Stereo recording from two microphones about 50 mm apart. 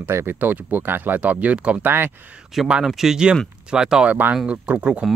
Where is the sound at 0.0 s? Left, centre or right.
Right.